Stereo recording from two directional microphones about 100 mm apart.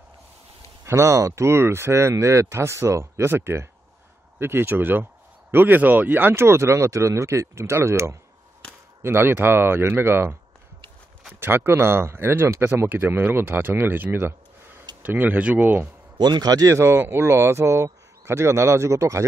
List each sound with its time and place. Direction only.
0.8 s speech: 30° right (ahead or behind)
11.3 s speech: 25° right (ahead or behind)
16.2 s speech: 45° right (ahead or behind)